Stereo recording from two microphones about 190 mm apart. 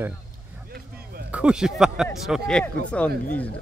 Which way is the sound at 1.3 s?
5° right (ahead or behind).